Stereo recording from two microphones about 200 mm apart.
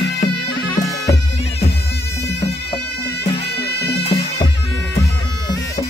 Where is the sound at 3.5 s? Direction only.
55° left (ahead or behind).